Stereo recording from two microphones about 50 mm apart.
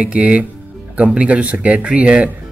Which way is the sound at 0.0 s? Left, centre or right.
Right.